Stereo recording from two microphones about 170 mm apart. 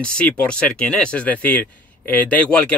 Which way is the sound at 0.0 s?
5° left (ahead or behind).